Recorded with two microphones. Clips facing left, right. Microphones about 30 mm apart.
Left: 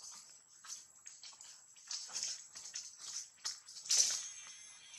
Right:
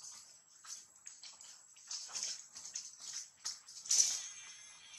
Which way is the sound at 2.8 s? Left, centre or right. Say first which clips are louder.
Even; centre.